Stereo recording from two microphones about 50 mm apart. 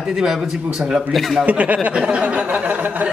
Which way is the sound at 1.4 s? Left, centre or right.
Right.